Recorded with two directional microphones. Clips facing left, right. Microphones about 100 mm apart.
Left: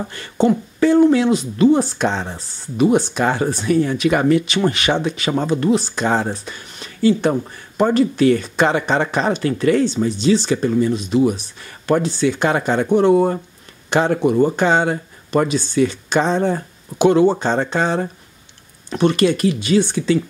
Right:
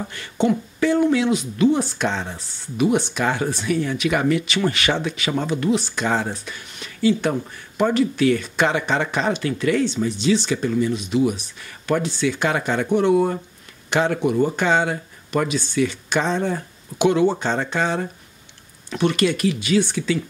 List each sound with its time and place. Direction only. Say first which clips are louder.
0.1 s speech: left 4 dB; 35° left (ahead or behind); by 5.1 s 20° left (ahead or behind)
5.1 s speech: left 4 dB; 35° left (ahead or behind)